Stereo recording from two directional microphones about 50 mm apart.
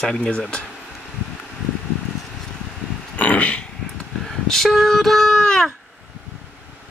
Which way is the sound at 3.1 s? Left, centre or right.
Left.